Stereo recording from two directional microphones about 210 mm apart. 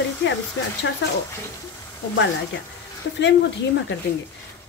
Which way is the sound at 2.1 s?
60° left (ahead or behind).